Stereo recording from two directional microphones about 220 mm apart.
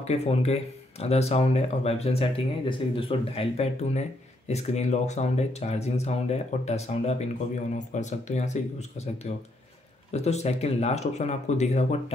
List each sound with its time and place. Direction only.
0.0 s speech: 30° left (ahead or behind)